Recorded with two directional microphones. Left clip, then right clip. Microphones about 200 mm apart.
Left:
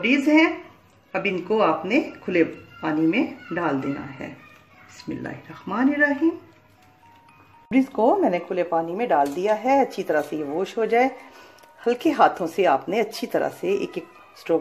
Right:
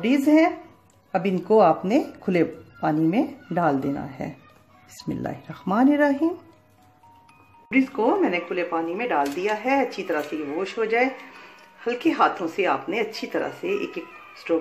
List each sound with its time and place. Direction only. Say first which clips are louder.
0.0 s speech: left 1 dB; 55° right (ahead or behind)
5.0 s speech: right 2 dB; 55° right (ahead or behind)
7.7 s speech: left 2 dB; 50° left (ahead or behind)